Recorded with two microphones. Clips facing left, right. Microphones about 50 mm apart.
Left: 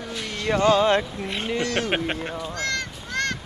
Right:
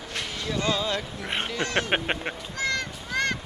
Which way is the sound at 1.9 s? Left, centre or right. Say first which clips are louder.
Left 1 dB; centre.